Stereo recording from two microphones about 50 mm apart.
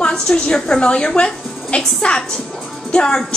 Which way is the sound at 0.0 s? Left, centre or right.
Centre.